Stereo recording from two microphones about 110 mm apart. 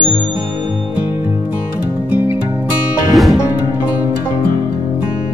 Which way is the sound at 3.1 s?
Centre (ahead or behind).